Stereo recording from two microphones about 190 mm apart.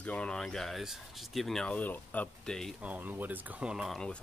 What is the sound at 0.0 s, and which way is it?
Speech, 5° left (ahead or behind).